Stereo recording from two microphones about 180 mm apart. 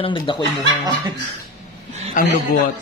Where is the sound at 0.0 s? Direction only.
25° left (ahead or behind).